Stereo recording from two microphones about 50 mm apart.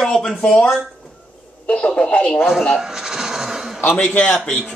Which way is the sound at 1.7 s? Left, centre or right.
Left.